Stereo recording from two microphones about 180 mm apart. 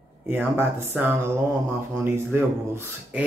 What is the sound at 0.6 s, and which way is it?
Speech, 10° right (ahead or behind).